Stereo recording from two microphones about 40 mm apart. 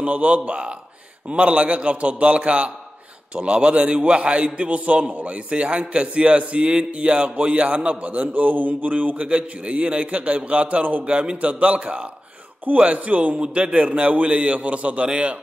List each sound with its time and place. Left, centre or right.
0.0 s a man's voice: right
11.1 s a man's voice: right
13.4 s a man's voice: right